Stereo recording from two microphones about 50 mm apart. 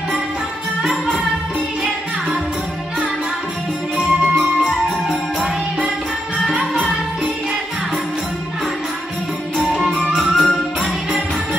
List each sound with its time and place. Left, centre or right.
4.0 s music: centre
9.7 s music: centre